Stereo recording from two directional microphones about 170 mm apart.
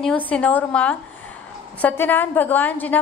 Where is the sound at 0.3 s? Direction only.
10° left (ahead or behind).